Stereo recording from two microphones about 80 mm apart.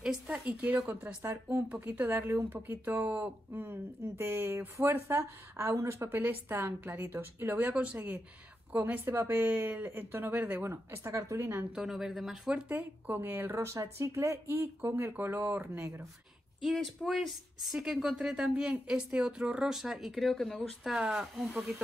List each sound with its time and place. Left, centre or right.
0.3 s a woman's voice: centre
11.7 s speech: centre
12.6 s speech: right
13.7 s speech: right
16.6 s a woman's voice: centre
20.8 s speech: centre